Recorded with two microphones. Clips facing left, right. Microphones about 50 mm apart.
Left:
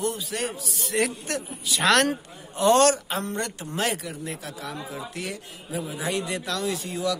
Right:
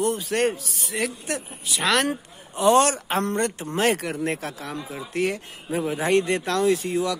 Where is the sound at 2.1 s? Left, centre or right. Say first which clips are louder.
Right 1 dB; right.